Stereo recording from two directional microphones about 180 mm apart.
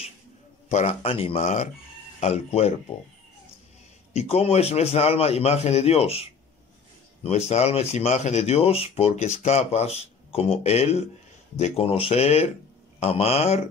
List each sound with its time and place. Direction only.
0.7 s speech: 35° left (ahead or behind)
4.1 s speech: 35° left (ahead or behind)
7.2 s speech: 40° left (ahead or behind)